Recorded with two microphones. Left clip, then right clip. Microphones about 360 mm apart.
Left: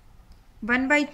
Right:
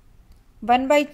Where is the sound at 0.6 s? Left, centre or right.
Centre.